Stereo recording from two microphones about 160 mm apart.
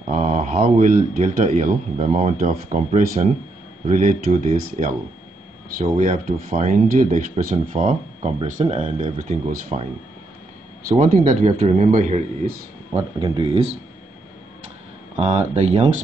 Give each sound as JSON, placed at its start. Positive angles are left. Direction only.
{"t": 0.0, "sound": "speech", "side_deg": -45}
{"t": 11.0, "sound": "speech", "side_deg": -50}
{"t": 12.9, "sound": "speech", "side_deg": -30}
{"t": 15.1, "sound": "speech", "side_deg": -40}